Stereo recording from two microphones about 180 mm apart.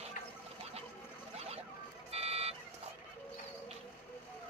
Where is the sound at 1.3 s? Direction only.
35° right (ahead or behind).